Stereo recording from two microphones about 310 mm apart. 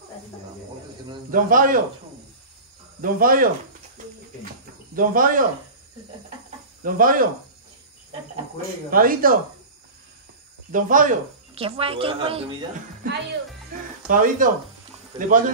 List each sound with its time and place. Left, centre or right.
1.3 s speech: right
3.0 s speech: right
4.9 s speech: right
6.8 s speech: right
8.9 s speech: right
10.7 s speech: right
14.0 s speech: right